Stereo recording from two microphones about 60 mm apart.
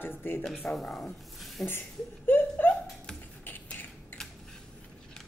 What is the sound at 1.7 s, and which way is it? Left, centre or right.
Laughter, left.